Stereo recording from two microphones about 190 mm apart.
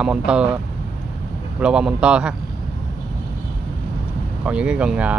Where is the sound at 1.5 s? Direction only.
5° right (ahead or behind).